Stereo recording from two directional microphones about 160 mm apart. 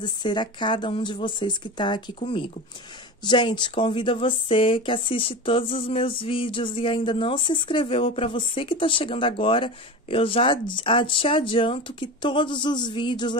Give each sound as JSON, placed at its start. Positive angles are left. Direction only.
{"t": 0.0, "sound": "speech", "side_deg": 30}